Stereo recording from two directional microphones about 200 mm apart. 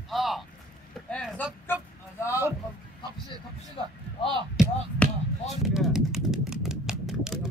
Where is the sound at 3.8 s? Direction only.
30° left (ahead or behind).